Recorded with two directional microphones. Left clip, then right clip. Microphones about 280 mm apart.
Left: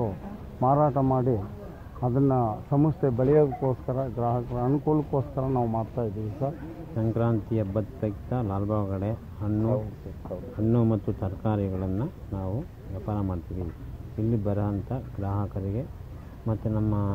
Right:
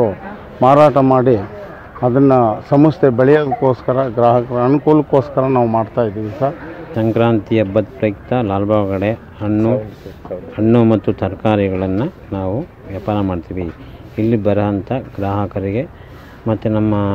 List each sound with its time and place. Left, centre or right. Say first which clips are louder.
0.6 s speech: right 14 dB; right
7.0 s speech: right 14 dB; right
10.7 s speech: right 14 dB; right